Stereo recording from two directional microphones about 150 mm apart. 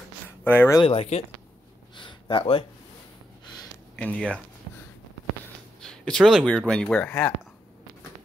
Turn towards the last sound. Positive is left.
turn(degrees=10)  # may be behind; listen again after turning